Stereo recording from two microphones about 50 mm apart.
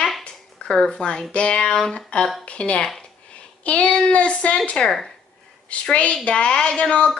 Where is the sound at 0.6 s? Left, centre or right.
Centre.